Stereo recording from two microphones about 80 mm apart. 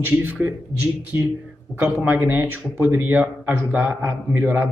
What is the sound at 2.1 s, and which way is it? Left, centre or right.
A man's voice, right.